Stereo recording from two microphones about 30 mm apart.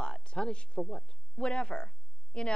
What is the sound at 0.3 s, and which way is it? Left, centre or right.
A woman's voice, left.